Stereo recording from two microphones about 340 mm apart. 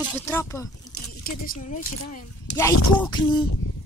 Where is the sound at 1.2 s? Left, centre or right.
Left.